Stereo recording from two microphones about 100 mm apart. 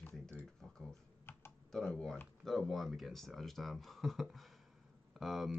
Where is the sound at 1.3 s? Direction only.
25° left (ahead or behind).